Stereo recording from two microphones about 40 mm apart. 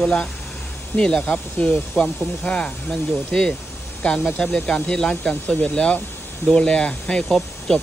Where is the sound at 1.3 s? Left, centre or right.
Left.